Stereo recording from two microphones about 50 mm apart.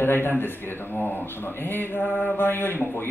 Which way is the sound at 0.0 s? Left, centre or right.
Left.